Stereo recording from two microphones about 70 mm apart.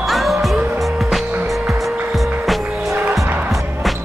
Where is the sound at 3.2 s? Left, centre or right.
Right.